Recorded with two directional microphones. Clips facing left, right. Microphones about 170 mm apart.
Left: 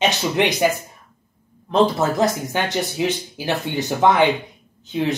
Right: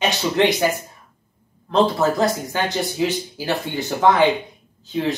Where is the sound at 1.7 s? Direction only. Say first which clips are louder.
Even; 20° left (ahead or behind).